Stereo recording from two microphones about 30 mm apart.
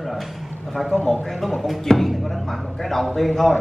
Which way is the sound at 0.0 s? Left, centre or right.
Centre.